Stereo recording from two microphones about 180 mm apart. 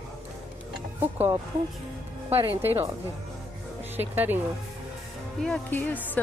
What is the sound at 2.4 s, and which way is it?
Speech, 30° right (ahead or behind).